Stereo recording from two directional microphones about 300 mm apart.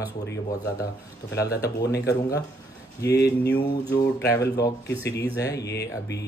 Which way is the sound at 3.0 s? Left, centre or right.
Left.